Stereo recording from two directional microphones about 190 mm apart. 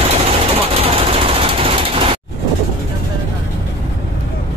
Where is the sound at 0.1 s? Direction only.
30° right (ahead or behind).